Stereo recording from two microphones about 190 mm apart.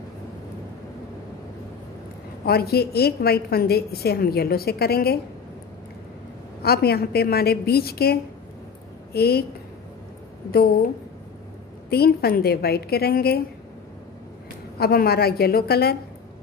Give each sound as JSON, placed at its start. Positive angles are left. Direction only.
{"t": 2.4, "sound": "a woman's voice", "side_deg": 55}
{"t": 6.6, "sound": "a woman's voice", "side_deg": 55}
{"t": 10.5, "sound": "a woman's voice", "side_deg": 55}
{"t": 11.9, "sound": "a woman's voice", "side_deg": 55}
{"t": 14.8, "sound": "a woman's voice", "side_deg": 55}